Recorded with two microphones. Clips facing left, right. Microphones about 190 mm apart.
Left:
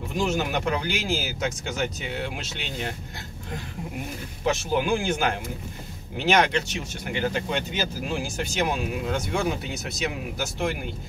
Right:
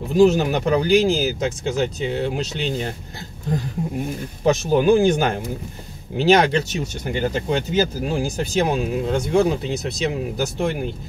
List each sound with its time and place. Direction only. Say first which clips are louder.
0.1 s speech: right 11 dB; 35° right (ahead or behind)
4.5 s speech: right 8 dB; 40° right (ahead or behind)